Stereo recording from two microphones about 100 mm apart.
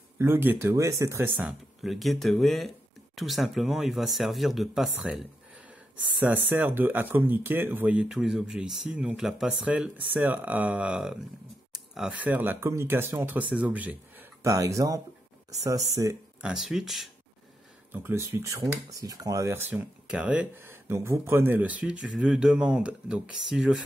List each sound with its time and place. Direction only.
0.2 s speech: 20° right (ahead or behind)
1.8 s speech: centre (ahead or behind)
6.2 s speech: 20° right (ahead or behind)
11.7 s a sound: 5° right (ahead or behind)
12.2 s speech: 15° right (ahead or behind)
14.4 s speech: 30° right (ahead or behind)
16.5 s speech: 5° right (ahead or behind)
17.9 s speech: 20° right (ahead or behind); by 23.8 s 5° right (ahead or behind)